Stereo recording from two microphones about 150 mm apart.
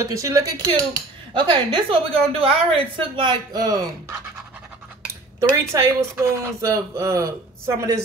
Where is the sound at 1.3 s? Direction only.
30° right (ahead or behind).